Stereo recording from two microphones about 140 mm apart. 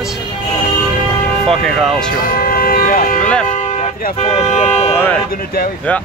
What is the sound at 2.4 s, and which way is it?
Vehicle, 90° left.